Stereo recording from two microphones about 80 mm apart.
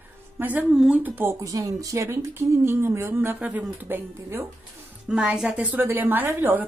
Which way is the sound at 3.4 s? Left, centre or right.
Centre.